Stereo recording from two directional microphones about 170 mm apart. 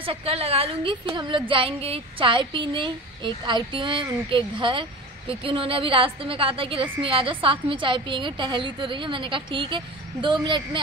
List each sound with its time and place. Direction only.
0.0 s a woman's voice: 35° right (ahead or behind)